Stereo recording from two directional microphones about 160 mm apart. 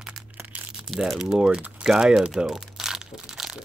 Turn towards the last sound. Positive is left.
turn(degrees=-5)  # may be behind; listen again after turning